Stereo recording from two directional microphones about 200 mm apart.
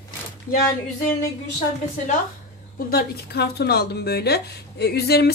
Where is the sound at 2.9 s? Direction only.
50° left (ahead or behind).